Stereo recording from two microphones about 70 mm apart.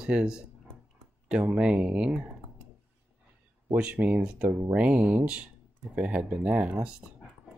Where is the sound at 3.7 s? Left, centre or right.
Centre.